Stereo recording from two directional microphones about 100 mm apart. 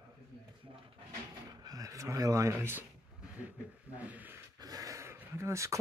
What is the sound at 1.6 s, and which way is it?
Speech, 35° right (ahead or behind).